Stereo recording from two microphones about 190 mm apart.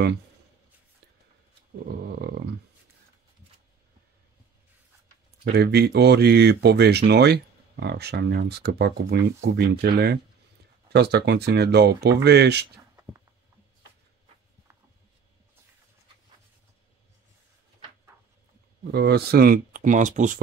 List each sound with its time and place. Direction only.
1.9 s a sound: 60° right (ahead or behind)
5.4 s speech: 60° right (ahead or behind)
18.9 s speech: 60° right (ahead or behind); by 20.3 s 40° right (ahead or behind)